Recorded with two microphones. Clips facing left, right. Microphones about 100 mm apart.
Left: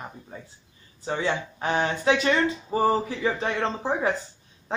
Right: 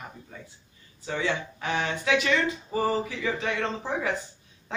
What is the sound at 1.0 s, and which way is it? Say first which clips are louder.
Speech: left 2 dB; 35° left (ahead or behind).